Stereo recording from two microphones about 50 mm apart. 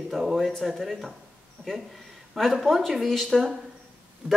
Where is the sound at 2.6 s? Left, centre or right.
Centre.